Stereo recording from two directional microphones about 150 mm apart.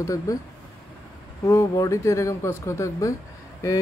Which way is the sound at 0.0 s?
20° left (ahead or behind).